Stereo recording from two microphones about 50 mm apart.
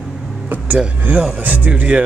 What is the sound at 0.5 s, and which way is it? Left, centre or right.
Vehicle, right.